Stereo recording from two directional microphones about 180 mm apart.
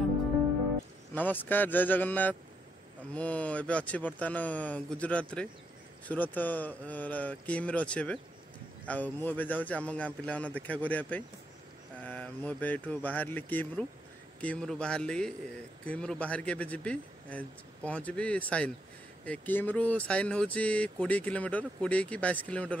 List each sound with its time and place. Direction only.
1.1 s a man's voice: 10° left (ahead or behind)